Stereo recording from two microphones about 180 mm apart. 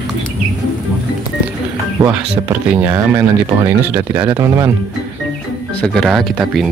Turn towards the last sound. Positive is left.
turn(degrees=0)  # may be behind; listen again after turning